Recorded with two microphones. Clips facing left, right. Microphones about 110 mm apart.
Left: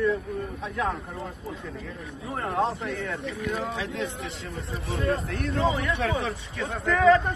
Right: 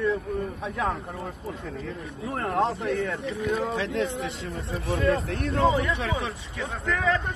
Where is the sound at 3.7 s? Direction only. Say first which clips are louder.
Right 4 dB; 70° right (ahead or behind).